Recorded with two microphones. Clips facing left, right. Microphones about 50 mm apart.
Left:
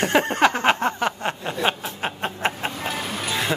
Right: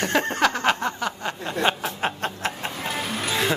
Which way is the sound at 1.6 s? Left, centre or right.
Centre.